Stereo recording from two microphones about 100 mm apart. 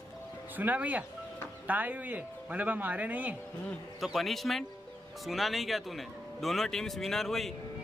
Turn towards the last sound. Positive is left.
turn(degrees=5)  # may be behind; listen again after turning